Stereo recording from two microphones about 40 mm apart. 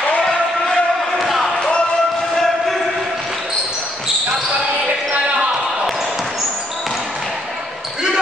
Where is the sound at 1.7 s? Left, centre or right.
Left.